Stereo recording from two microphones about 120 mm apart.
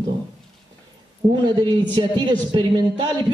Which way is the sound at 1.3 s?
35° right (ahead or behind).